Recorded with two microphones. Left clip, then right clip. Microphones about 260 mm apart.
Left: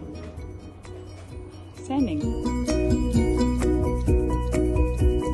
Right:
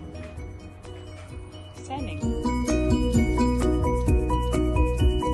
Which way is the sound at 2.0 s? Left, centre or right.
Centre.